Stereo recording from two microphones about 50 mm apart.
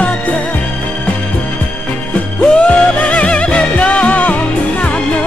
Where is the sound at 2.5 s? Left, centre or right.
Left.